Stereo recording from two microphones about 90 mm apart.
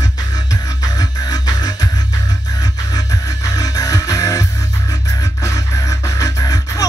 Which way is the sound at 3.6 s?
40° left (ahead or behind).